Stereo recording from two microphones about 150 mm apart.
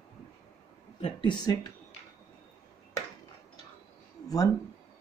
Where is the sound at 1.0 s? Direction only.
30° left (ahead or behind).